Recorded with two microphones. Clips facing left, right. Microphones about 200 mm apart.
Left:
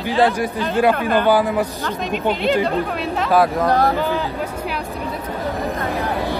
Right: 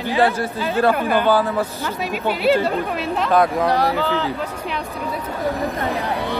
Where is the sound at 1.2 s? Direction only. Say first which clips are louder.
Left 3 dB; 15° left (ahead or behind).